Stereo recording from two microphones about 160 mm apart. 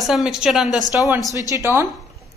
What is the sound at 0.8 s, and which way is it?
Speech, 25° left (ahead or behind).